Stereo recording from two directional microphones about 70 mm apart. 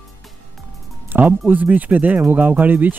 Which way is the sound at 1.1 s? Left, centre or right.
Right.